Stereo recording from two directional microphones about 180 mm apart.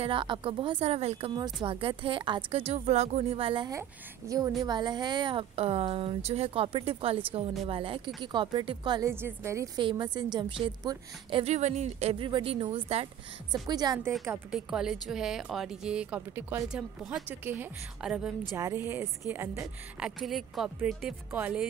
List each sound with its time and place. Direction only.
0.0 s a woman's voice: 30° right (ahead or behind)
9.1 s a woman's voice: 15° right (ahead or behind)
14.5 s speech: 5° right (ahead or behind)
20.2 s speech: centre (ahead or behind)